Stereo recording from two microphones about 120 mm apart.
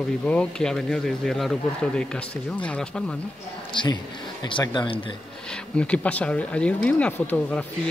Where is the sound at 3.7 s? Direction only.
40° left (ahead or behind).